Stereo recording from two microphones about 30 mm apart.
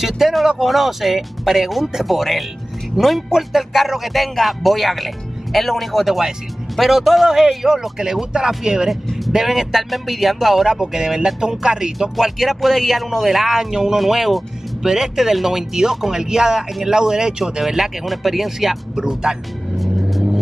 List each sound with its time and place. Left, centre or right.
0.0 s speech: centre
7.2 s speech: centre
8.8 s speech: centre
10.7 s speech: centre
12.2 s speech: centre
18.0 s speech: centre
18.9 s speech: right
19.8 s vehicle: centre